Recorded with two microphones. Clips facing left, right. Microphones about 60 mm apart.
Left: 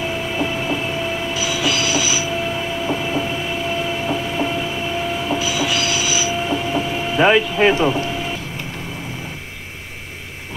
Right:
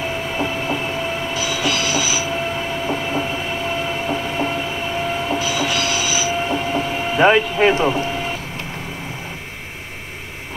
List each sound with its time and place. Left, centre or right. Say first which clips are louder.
0.4 s train: even; right
7.5 s speech: even; right